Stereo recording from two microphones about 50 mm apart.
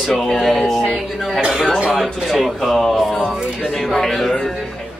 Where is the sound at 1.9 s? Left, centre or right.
Centre.